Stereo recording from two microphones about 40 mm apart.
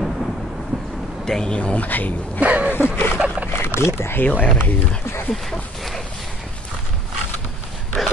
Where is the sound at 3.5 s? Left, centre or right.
Left.